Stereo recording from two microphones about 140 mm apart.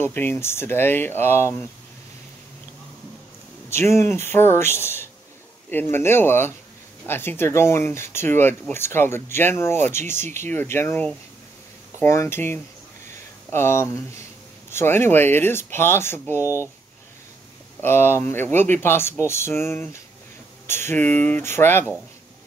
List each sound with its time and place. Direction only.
0.0 s speech: 15° left (ahead or behind)
3.7 s speech: 20° left (ahead or behind)
17.7 s speech: 15° left (ahead or behind)